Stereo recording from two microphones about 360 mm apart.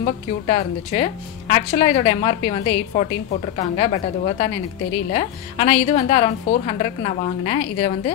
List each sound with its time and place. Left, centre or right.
0.0 s a woman's voice: centre